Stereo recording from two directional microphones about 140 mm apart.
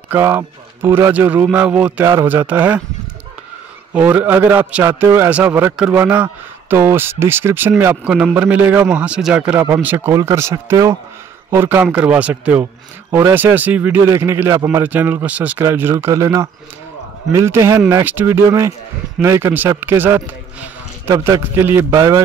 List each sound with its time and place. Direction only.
0.1 s speech: 15° right (ahead or behind)
3.9 s speech: 10° right (ahead or behind)